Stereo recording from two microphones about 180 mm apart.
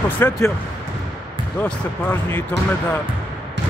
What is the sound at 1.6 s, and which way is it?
Speech, 10° left (ahead or behind).